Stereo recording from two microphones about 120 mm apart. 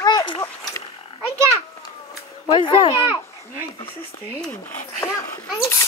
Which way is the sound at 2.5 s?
40° left (ahead or behind).